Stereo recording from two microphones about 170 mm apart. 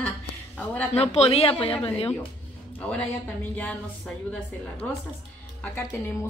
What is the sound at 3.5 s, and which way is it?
A woman's voice, 5° left (ahead or behind).